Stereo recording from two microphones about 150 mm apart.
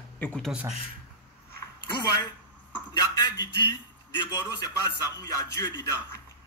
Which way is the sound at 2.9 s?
30° left (ahead or behind).